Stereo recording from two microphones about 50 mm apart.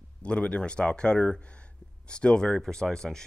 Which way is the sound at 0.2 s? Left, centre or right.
Left.